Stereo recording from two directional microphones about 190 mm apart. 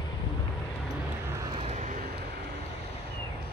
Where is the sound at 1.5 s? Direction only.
30° right (ahead or behind).